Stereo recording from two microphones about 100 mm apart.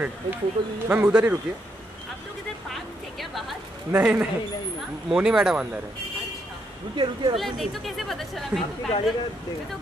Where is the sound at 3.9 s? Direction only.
15° right (ahead or behind).